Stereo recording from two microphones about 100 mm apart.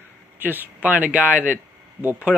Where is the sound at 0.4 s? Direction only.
20° right (ahead or behind).